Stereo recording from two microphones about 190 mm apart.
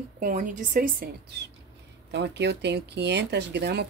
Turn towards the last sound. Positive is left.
turn(degrees=-60)  # may be behind; listen again after turning